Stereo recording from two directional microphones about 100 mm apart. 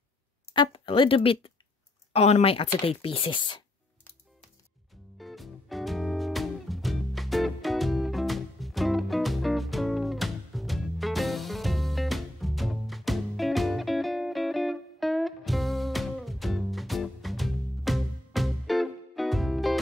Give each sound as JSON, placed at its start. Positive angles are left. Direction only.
{"t": 0.6, "sound": "speech", "side_deg": 55}
{"t": 5.1, "sound": "music", "side_deg": 0}